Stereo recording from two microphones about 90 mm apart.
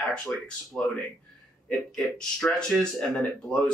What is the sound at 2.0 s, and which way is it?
Speech, 5° left (ahead or behind).